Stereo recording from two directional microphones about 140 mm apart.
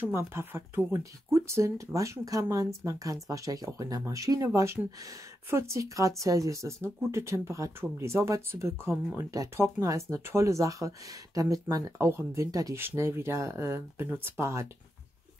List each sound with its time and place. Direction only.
0.0 s speech: 15° right (ahead or behind)